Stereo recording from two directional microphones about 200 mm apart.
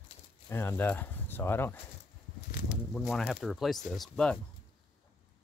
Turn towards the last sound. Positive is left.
turn(degrees=0)  # may be behind; listen again after turning